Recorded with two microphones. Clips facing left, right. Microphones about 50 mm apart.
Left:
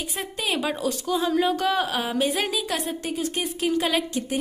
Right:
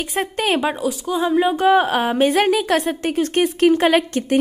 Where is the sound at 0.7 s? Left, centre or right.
Centre.